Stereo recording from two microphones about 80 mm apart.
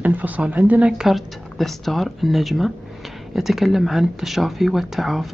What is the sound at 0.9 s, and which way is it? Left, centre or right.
Speech, centre.